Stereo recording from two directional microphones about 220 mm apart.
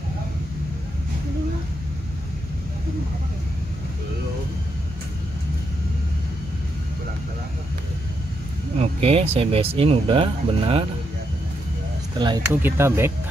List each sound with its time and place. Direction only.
8.7 s speech: 25° right (ahead or behind)
12.2 s speech: 20° right (ahead or behind)